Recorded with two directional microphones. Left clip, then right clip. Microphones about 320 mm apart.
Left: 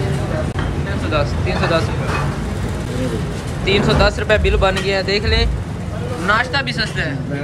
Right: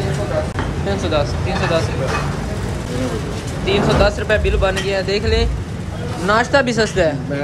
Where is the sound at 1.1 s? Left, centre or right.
Centre.